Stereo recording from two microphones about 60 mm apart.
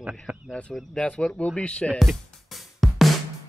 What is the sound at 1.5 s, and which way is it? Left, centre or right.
Speech, centre.